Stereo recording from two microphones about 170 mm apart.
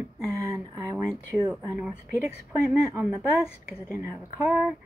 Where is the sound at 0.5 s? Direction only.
20° right (ahead or behind).